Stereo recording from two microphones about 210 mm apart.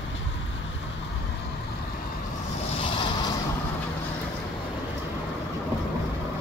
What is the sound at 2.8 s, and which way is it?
Vehicle, 25° left (ahead or behind).